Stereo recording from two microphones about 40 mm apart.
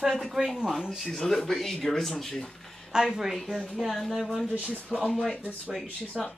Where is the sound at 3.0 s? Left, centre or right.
Centre.